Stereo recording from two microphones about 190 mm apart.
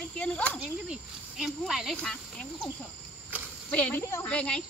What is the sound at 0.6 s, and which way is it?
Speech, 5° right (ahead or behind).